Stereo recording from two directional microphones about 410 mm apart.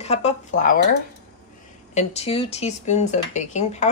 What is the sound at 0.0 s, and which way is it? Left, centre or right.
Speech, centre.